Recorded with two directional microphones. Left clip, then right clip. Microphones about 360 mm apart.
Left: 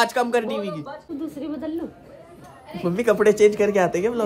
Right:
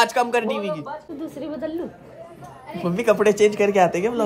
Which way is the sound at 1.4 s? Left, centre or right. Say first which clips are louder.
Right 2 dB; right.